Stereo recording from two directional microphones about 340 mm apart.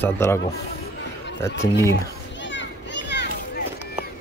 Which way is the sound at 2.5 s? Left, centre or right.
Left.